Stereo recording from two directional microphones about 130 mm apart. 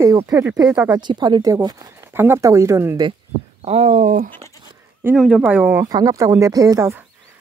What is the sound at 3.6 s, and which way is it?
Speech, 55° right (ahead or behind).